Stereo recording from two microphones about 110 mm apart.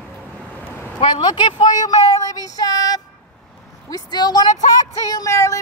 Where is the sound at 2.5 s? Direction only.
35° left (ahead or behind).